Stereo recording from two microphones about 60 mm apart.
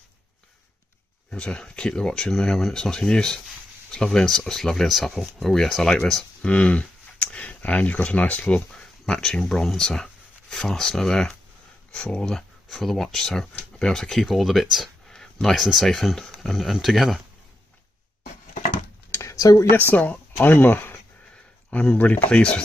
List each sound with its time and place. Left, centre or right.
1.3 s speech: centre
6.4 s speech: left; by 17.2 s centre
19.1 s a sound: left
19.7 s speech: left
21.6 s speech: left
22.3 s speech: centre